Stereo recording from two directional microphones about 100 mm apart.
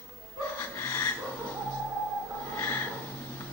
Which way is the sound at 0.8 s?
25° left (ahead or behind).